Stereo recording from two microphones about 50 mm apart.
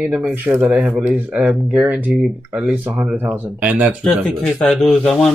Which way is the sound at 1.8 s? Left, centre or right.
Right.